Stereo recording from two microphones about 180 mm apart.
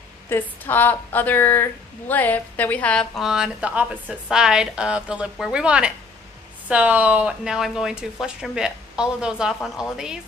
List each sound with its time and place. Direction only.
0.3 s a woman's voice: 10° left (ahead or behind)